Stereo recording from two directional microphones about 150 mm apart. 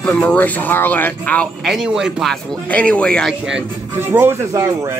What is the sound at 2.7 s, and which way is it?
Speech, 10° left (ahead or behind).